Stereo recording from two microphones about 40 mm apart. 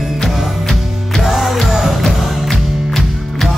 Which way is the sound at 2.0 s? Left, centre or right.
Centre.